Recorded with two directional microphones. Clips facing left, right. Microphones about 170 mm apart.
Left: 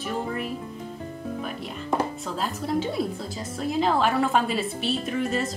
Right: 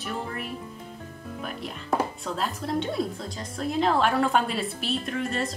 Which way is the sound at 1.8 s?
Centre (ahead or behind).